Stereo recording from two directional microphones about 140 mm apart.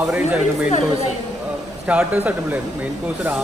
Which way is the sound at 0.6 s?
55° left (ahead or behind).